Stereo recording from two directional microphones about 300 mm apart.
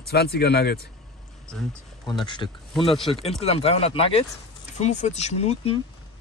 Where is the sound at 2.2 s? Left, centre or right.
Centre.